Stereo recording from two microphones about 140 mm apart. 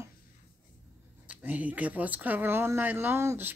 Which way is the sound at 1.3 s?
10° right (ahead or behind).